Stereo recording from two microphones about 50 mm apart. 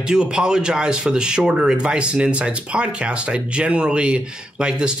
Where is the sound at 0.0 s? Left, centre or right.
Centre.